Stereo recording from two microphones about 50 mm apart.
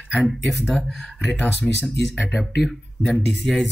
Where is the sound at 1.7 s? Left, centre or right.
Left.